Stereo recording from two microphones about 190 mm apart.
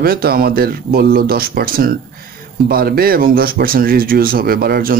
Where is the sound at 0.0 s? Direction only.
55° right (ahead or behind).